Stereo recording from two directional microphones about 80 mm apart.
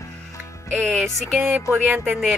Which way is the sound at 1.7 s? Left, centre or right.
Right.